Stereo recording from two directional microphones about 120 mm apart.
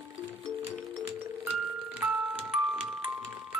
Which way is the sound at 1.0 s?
15° right (ahead or behind).